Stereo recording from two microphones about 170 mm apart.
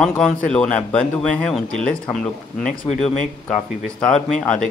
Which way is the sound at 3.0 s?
Centre (ahead or behind).